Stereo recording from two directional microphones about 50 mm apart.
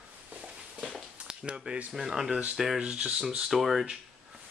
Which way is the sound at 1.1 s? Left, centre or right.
Right.